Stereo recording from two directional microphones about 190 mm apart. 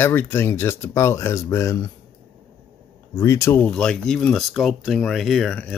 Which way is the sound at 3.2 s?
15° left (ahead or behind).